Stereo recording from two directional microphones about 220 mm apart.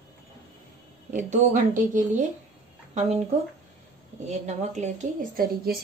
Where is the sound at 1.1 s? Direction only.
35° right (ahead or behind).